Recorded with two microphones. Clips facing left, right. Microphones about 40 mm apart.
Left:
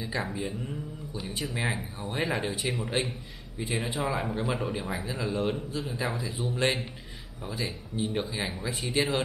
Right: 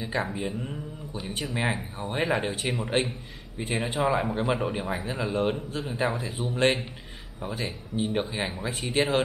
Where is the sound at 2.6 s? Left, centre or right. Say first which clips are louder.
Right 2 dB; centre.